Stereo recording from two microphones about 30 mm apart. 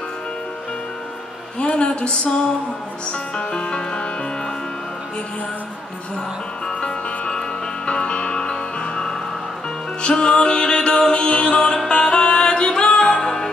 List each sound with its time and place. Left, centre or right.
1.6 s a woman's voice: left
3.1 s music: left
6.8 s music: left
8.4 s music: left
10.1 s music: left